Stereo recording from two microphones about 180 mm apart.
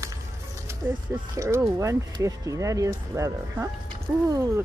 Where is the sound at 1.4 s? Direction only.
15° right (ahead or behind).